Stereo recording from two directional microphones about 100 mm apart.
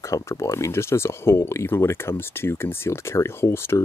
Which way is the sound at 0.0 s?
30° left (ahead or behind).